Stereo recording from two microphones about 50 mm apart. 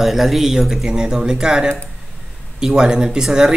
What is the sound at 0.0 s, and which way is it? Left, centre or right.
Speech, centre.